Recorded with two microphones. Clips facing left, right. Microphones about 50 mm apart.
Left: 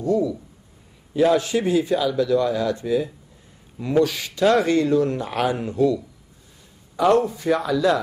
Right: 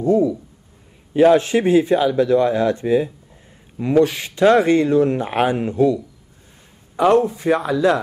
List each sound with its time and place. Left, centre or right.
0.0 s speech: right